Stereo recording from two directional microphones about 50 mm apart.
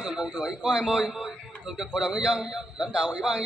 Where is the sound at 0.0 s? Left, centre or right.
Centre.